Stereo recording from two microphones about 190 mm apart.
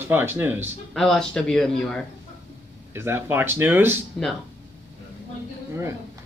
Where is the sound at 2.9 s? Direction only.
10° right (ahead or behind).